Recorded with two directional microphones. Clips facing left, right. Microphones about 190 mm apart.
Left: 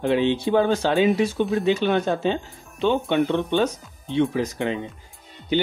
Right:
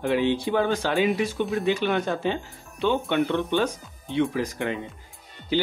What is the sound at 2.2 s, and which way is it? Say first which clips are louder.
Speech: left 3 dB; 25° left (ahead or behind).